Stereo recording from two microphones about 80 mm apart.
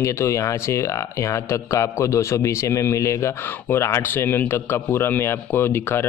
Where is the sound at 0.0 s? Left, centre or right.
Left.